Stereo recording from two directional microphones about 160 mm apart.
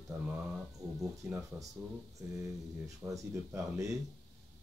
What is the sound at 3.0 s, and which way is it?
Speech, 20° right (ahead or behind).